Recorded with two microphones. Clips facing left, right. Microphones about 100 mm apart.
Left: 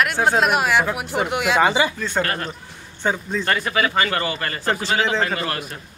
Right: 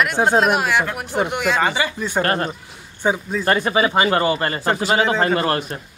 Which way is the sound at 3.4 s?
25° right (ahead or behind).